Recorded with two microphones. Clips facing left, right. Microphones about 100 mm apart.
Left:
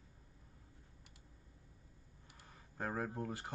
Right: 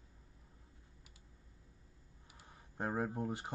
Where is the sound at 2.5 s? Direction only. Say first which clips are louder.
Right 3 dB; 20° right (ahead or behind).